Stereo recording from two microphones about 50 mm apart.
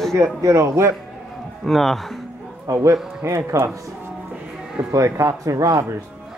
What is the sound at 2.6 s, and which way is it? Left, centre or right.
Speech, right.